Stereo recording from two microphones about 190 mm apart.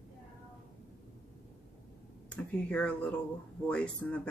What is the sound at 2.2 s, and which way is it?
Speech, 5° left (ahead or behind).